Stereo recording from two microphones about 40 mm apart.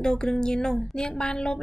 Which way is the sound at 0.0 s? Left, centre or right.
Centre.